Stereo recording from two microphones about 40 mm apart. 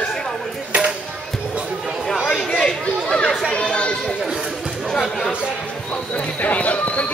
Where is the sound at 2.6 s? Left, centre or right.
Centre.